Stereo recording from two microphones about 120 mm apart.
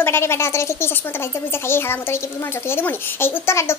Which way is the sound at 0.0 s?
20° left (ahead or behind).